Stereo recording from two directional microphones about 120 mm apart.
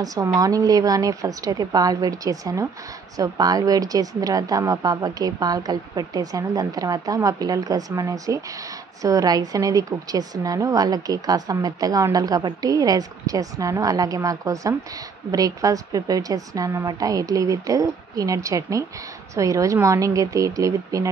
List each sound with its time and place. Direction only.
0.0 s a woman's voice: 30° right (ahead or behind)